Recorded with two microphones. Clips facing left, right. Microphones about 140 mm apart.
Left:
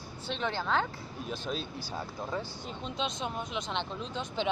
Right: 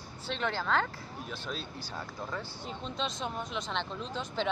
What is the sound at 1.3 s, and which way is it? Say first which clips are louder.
Speech: left 5 dB; 20° left (ahead or behind).